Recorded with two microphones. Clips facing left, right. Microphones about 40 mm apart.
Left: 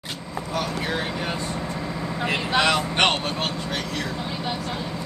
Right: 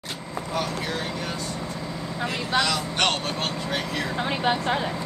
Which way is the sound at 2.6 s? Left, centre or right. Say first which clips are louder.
Left 4 dB; left.